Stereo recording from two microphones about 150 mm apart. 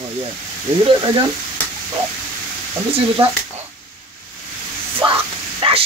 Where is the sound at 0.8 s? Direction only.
30° right (ahead or behind).